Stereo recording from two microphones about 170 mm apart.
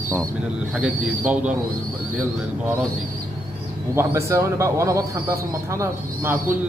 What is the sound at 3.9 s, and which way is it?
A man's voice, 15° right (ahead or behind).